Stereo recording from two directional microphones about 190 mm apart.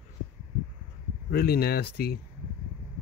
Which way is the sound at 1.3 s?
55° left (ahead or behind).